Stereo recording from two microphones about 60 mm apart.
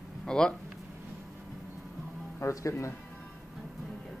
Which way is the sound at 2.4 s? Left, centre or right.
Left.